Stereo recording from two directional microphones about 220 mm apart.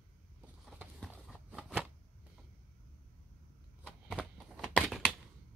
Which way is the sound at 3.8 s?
Centre (ahead or behind).